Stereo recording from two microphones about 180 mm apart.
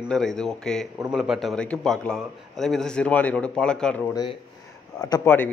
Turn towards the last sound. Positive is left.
turn(degrees=10)  # may be behind; listen again after turning